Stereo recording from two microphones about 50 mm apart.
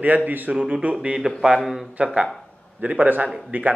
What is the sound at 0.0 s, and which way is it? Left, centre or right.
Speech, right.